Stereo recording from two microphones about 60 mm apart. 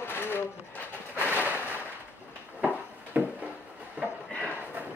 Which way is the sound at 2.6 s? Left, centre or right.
Right.